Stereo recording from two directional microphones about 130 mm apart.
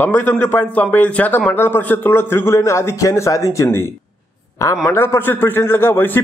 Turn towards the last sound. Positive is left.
turn(degrees=15)  # may be behind; listen again after turning